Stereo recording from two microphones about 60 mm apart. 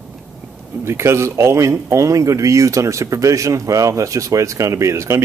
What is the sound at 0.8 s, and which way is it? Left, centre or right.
Speech, right.